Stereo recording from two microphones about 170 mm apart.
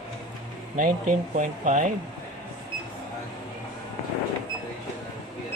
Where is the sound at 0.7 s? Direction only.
50° right (ahead or behind).